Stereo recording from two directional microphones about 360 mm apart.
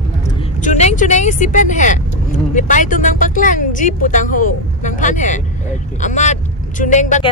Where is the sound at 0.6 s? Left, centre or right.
Centre.